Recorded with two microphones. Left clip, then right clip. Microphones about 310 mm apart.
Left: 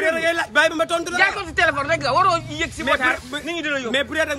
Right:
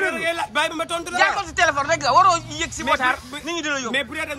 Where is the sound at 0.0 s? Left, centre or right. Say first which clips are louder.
Left 3 dB; centre.